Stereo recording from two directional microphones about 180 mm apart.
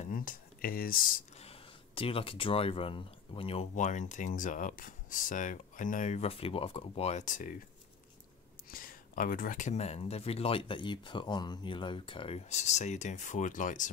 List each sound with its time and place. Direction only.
0.1 s speech: 50° left (ahead or behind)
1.4 s speech: 30° left (ahead or behind)
8.6 s speech: 50° left (ahead or behind)